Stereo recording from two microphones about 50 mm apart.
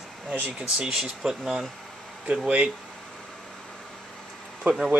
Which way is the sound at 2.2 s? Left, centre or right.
Centre.